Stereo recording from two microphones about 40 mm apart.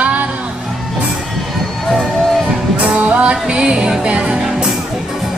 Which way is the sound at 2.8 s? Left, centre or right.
Right.